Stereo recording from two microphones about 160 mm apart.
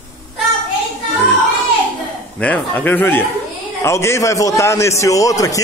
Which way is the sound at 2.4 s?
10° left (ahead or behind).